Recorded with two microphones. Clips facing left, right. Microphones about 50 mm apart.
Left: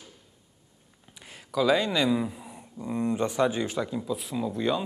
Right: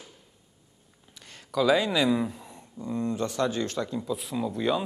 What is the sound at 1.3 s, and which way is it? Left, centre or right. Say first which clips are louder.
Speech: right 1 dB; centre.